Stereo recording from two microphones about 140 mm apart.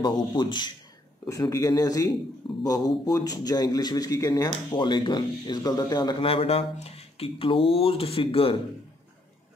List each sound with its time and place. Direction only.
0.0 s a man's voice: 35° left (ahead or behind)
6.2 s speech: 45° left (ahead or behind)